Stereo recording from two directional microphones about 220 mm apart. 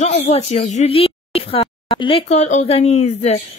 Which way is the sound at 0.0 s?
30° left (ahead or behind).